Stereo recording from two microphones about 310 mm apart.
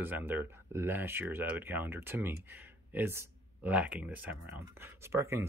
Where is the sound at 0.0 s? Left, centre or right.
Centre.